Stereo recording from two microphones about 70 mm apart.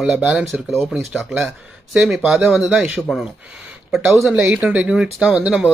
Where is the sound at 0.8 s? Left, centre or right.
Centre.